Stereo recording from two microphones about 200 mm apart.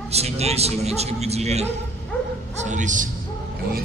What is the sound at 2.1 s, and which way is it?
Speech, 5° left (ahead or behind).